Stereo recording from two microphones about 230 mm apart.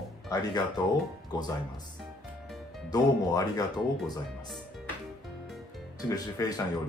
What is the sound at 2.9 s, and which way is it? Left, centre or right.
Speech, centre.